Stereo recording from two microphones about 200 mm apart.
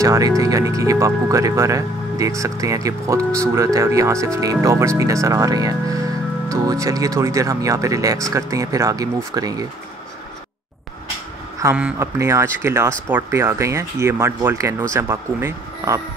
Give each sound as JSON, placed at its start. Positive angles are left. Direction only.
{"t": 0.0, "sound": "speech", "side_deg": -15}
{"t": 11.6, "sound": "speech", "side_deg": -10}